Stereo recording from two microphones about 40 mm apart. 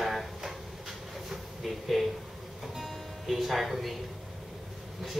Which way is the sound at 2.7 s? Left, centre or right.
Centre.